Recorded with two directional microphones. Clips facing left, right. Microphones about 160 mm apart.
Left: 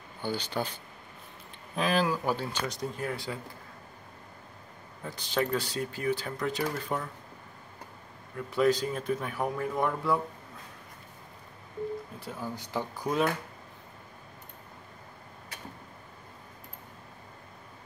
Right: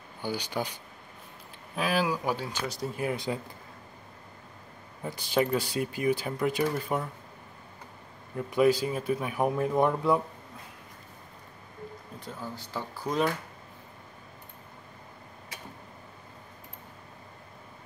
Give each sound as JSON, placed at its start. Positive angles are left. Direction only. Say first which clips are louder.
{"t": 0.2, "sound": "speech", "louder": "even", "side_deg": -10}
{"t": 1.8, "sound": "speech", "louder": "left 1 dB", "side_deg": -10}
{"t": 3.1, "sound": "speech", "louder": "right 4 dB", "side_deg": -20}
{"t": 5.0, "sound": "speech", "louder": "right 3 dB", "side_deg": -10}
{"t": 8.4, "sound": "speech", "louder": "right 2 dB", "side_deg": -15}
{"t": 12.2, "sound": "speech", "louder": "left 2 dB", "side_deg": 15}